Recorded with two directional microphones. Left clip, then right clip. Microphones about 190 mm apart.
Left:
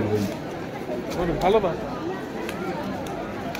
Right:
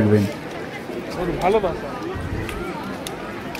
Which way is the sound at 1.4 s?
35° right (ahead or behind).